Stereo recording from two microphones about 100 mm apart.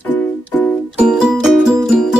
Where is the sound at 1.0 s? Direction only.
5° right (ahead or behind).